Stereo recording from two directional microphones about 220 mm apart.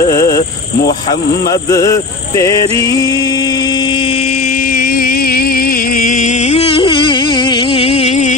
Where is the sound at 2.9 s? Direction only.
15° left (ahead or behind).